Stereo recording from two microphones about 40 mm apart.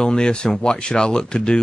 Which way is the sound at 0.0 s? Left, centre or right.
Centre.